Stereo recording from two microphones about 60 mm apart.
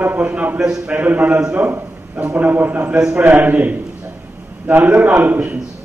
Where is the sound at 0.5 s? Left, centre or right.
Centre.